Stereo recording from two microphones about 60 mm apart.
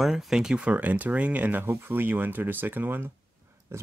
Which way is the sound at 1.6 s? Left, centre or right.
Right.